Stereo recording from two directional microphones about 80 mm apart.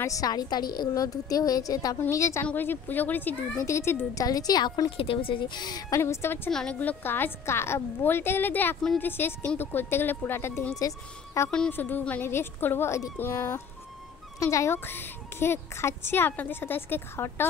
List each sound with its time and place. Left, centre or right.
0.0 s a woman's voice: left
2.0 s a woman's voice: left
2.4 s speech: left
3.5 s a woman's voice: left
4.2 s a woman's voice: left
5.9 s a woman's voice: left
6.5 s a woman's voice: centre
6.8 s speech: left
10.8 s a woman's voice: left
11.7 s a woman's voice: left
14.8 s speech: left